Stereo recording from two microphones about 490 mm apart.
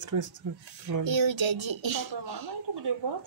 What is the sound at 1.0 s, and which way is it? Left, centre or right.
Speech, right.